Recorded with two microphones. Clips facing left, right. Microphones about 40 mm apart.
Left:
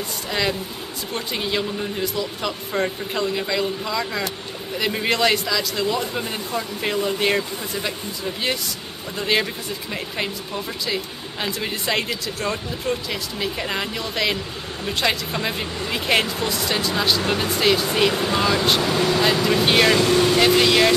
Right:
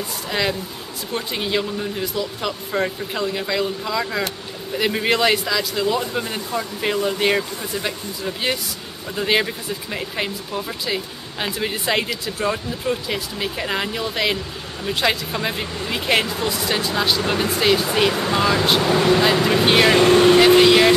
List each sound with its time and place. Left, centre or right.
0.3 s speech: centre
9.1 s speech: centre
18.8 s speech: right
19.4 s speech: centre
20.0 s speech: right
20.3 s speech: centre